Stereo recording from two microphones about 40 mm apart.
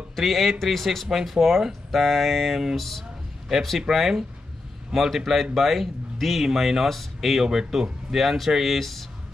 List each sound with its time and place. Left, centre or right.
0.1 s speech: centre
2.7 s speech: centre
3.9 s speech: centre